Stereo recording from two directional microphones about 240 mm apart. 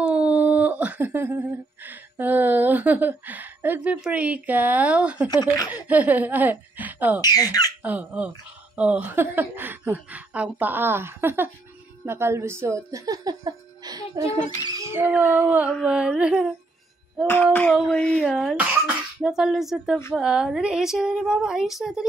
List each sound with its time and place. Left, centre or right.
0.0 s humming: centre
5.3 s speech: centre
5.7 s speech: centre
7.2 s speech: centre
7.8 s speech: centre
14.6 s a sound: centre
17.3 s a sound: centre